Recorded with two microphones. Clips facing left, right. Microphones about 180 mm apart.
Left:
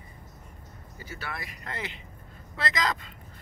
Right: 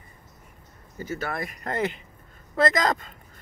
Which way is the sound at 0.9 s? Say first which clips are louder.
Right 9 dB; 45° right (ahead or behind).